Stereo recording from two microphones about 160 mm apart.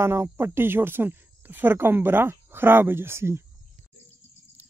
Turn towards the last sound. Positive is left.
turn(degrees=-15)  # may be behind; listen again after turning